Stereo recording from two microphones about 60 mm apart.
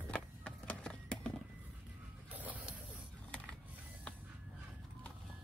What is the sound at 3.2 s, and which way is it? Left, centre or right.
Mechanisms, centre.